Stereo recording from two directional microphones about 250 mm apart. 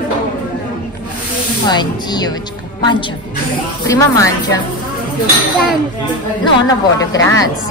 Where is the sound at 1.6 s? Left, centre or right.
Centre.